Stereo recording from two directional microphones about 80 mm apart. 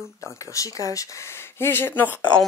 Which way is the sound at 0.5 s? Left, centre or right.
Left.